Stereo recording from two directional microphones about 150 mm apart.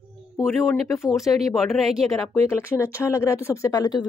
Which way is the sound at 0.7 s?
20° left (ahead or behind).